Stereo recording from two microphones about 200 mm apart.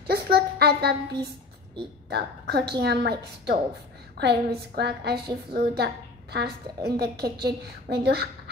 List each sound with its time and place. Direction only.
0.0 s a child's voice: 55° right (ahead or behind)